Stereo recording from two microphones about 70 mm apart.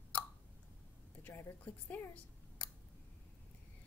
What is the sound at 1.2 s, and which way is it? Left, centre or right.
Speech, left.